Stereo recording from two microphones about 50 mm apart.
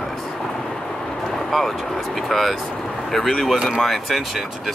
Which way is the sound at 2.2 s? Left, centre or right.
Centre.